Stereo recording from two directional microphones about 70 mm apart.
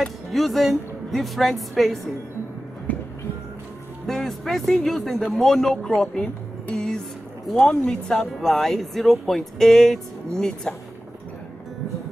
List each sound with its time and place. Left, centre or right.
0.0 s speech: centre
2.9 s music: left
4.1 s speech: centre
8.1 s speech: centre